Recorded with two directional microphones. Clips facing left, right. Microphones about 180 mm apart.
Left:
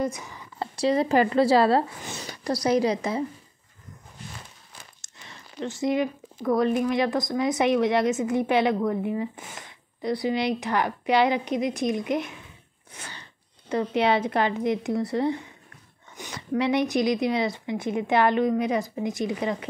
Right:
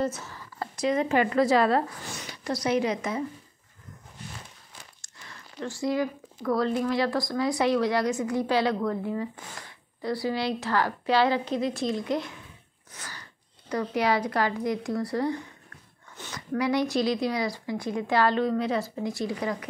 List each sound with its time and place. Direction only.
0.0 s a sound: 15° left (ahead or behind)
0.7 s a woman's voice: 35° left (ahead or behind)
5.0 s speech: 20° left (ahead or behind)